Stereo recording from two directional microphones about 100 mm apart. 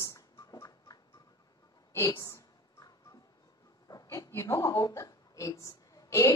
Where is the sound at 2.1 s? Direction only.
35° left (ahead or behind).